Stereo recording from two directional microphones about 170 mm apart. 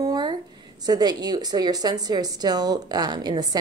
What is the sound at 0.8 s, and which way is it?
A woman's voice, 25° right (ahead or behind).